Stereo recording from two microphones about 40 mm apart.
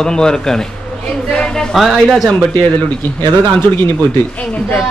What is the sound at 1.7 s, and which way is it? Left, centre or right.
Speech, centre.